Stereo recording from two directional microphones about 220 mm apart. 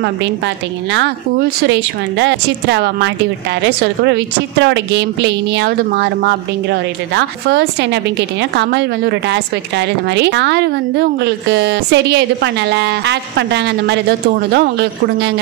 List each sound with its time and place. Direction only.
1.7 s a woman's voice: 55° right (ahead or behind)